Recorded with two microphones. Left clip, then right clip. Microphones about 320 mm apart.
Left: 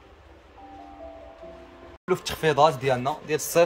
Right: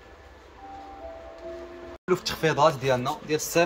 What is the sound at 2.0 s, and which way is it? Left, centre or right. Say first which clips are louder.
Speech: left 1 dB; centre.